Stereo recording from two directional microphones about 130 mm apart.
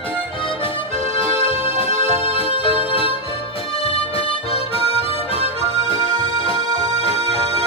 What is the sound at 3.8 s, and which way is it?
Harmonica, 45° left (ahead or behind).